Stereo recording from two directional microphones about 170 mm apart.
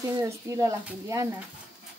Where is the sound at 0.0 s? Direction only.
20° right (ahead or behind).